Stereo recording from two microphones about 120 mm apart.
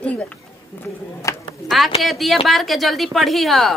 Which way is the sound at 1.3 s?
25° left (ahead or behind).